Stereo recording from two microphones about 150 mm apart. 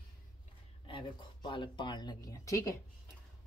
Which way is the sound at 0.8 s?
35° left (ahead or behind).